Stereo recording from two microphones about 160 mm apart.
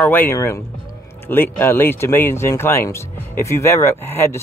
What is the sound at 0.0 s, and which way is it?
Speech, 10° left (ahead or behind).